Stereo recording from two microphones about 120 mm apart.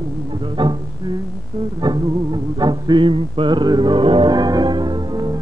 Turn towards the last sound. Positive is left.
turn(degrees=-35)  # may be behind; listen again after turning